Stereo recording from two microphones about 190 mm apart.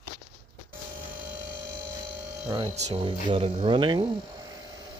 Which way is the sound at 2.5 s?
30° right (ahead or behind).